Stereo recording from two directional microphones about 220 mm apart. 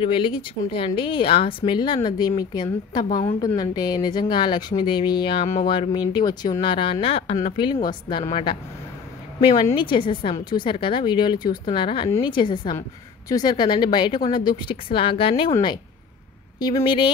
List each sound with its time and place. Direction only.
0.0 s a woman's voice: 20° left (ahead or behind)